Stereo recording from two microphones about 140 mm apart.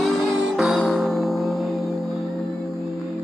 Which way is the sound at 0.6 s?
Centre (ahead or behind).